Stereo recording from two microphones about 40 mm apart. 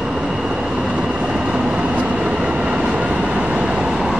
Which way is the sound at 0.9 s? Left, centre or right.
Right.